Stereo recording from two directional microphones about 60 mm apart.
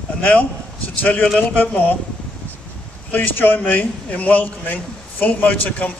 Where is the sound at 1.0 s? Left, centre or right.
Left.